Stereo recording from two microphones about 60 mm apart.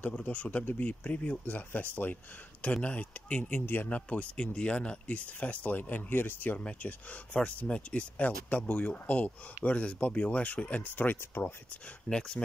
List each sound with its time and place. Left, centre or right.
0.2 s speech: left
12.1 s speech: centre